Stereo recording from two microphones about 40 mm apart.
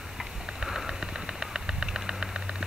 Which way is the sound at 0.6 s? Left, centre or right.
Centre.